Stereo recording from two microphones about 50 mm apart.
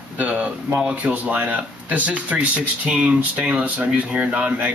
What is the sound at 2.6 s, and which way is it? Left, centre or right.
Speech, centre.